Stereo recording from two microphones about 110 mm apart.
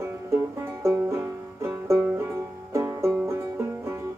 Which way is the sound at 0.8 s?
25° right (ahead or behind).